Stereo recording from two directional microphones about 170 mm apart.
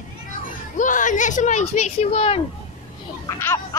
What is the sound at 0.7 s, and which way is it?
Speech, 50° left (ahead or behind).